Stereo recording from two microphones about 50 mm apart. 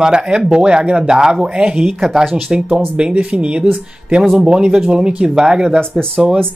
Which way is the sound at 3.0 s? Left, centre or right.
Right.